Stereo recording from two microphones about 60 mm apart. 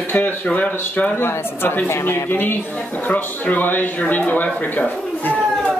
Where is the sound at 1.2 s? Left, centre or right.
Left.